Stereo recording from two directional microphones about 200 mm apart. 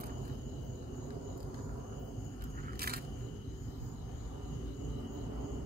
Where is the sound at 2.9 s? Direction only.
50° right (ahead or behind).